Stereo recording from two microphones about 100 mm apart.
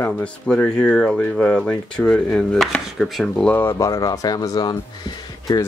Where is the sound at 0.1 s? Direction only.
10° left (ahead or behind).